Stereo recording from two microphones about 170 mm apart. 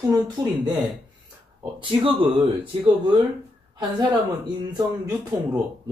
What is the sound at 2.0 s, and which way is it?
Speech, 30° right (ahead or behind).